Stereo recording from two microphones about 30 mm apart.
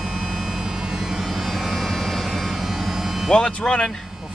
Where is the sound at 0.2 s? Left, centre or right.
Centre.